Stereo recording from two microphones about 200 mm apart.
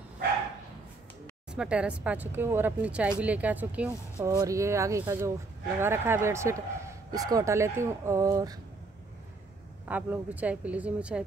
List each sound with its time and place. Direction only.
1.5 s a man's voice: 5° right (ahead or behind)
9.8 s a man's voice: 10° right (ahead or behind)